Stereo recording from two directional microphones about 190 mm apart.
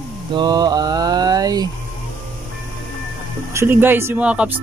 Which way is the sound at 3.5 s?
10° right (ahead or behind).